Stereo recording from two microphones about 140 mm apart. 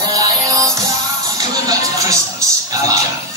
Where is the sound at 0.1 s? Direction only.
25° right (ahead or behind).